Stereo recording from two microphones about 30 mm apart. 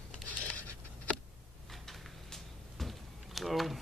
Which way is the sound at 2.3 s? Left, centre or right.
Centre.